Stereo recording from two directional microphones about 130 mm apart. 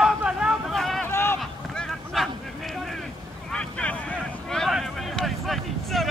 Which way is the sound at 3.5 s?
10° left (ahead or behind).